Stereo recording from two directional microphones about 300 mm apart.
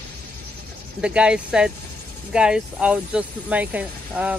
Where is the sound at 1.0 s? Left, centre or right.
Centre.